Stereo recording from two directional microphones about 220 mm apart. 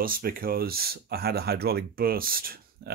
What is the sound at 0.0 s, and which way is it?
Speech, 40° right (ahead or behind).